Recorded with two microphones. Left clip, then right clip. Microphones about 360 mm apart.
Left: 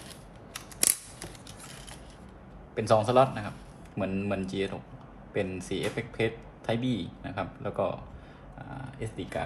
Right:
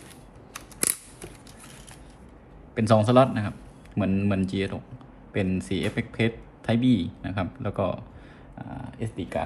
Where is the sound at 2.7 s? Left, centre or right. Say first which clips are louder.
Right 3 dB; right.